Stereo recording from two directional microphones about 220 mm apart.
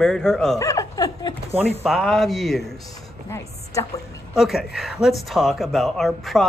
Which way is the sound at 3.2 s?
15° left (ahead or behind).